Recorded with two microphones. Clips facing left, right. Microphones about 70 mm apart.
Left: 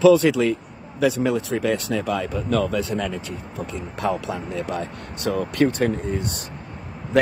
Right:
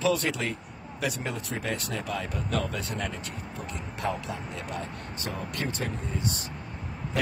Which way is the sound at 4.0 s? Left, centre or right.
Left.